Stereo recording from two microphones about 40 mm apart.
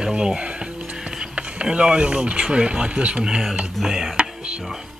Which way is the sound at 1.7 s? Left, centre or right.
Right.